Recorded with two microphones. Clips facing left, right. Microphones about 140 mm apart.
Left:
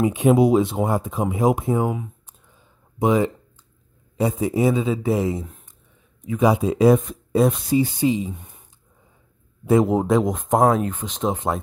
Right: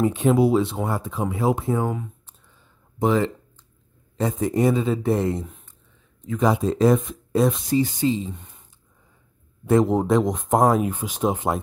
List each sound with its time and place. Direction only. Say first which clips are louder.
0.0 s speech: left 2 dB; 15° left (ahead or behind)
3.0 s speech: left 2 dB; 15° left (ahead or behind)
9.7 s speech: left 1 dB; 5° left (ahead or behind)